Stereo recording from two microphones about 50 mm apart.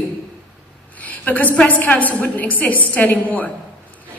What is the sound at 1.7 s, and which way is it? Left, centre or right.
A woman's voice, left.